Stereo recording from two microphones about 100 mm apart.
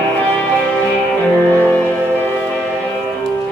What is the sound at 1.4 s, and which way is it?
Music, 20° left (ahead or behind).